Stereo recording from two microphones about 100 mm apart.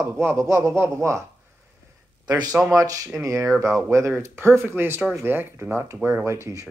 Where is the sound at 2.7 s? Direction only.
35° right (ahead or behind).